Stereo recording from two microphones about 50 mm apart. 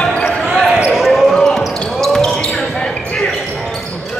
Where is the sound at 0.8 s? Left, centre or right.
Centre.